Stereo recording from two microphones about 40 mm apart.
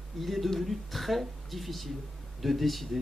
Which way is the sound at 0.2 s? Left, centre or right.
Centre.